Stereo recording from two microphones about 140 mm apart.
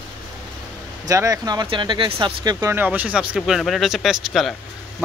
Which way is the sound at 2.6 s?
15° right (ahead or behind).